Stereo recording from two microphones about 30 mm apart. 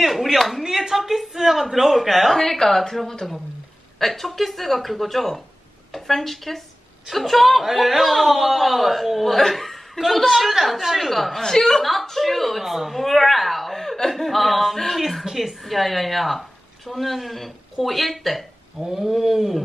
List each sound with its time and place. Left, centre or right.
0.1 s a sound: centre
0.7 s speech: centre
2.3 s a woman's voice: centre
11.1 s speech: centre
11.5 s a woman's voice: centre
11.8 s speech: centre
18.8 s a sound: centre